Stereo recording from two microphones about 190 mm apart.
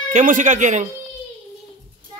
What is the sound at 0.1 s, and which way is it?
Speech, 40° right (ahead or behind).